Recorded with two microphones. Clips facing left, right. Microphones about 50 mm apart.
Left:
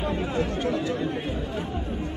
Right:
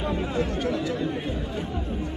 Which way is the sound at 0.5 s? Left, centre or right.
Left.